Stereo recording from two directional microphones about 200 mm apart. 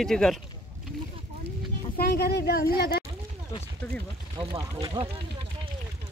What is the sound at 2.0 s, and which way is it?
Speech, 55° left (ahead or behind).